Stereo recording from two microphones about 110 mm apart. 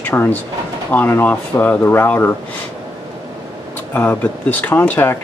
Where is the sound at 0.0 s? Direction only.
15° left (ahead or behind).